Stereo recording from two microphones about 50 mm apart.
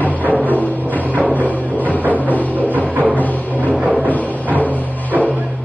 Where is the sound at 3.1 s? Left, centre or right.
Left.